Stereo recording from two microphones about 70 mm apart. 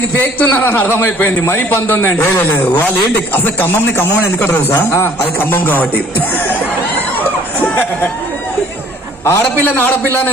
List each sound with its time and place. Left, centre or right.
0.2 s a man's voice: left
3.3 s a man's voice: left
7.6 s speech: left
9.2 s a man's voice: left